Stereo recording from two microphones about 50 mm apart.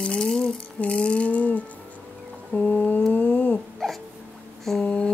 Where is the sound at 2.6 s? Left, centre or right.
Left.